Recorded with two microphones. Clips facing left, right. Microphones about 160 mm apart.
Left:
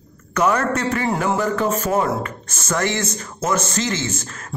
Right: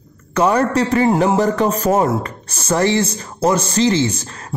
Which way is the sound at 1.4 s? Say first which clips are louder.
Right 4 dB; 40° right (ahead or behind).